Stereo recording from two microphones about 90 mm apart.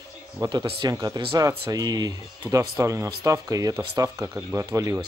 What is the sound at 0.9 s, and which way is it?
Speech, 40° right (ahead or behind).